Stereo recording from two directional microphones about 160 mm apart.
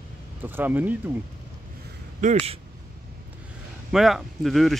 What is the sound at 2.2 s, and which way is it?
Speech, 45° right (ahead or behind).